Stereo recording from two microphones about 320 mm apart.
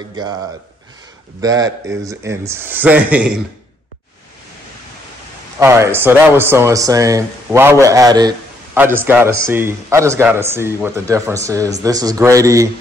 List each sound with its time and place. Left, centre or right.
0.1 s speech: centre
1.4 s speech: centre
5.6 s speech: centre